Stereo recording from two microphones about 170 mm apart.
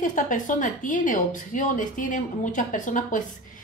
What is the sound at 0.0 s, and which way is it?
Speech, 50° left (ahead or behind).